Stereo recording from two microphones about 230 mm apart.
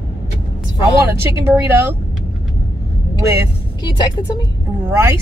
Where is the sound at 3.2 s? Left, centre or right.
Centre.